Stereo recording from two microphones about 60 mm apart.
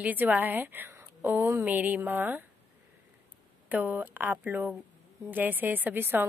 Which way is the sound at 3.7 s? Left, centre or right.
Right.